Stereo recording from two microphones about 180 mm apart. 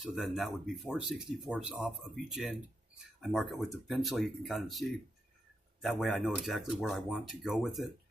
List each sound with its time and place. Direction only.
0.0 s speech: centre (ahead or behind)